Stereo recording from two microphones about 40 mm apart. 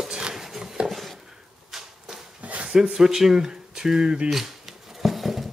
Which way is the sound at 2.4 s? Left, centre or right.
Right.